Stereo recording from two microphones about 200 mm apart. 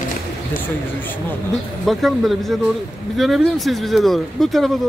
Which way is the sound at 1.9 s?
Centre (ahead or behind).